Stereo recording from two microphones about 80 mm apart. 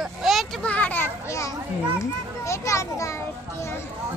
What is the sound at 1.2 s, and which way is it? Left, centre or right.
A child's voice, left.